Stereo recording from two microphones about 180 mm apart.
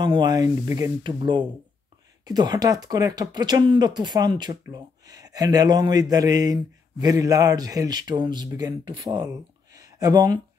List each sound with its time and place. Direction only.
0.0 s speech: 25° right (ahead or behind)